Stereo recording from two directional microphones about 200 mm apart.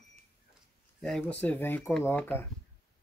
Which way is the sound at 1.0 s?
5° left (ahead or behind).